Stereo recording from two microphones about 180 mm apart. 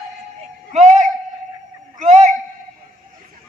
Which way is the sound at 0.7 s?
45° right (ahead or behind).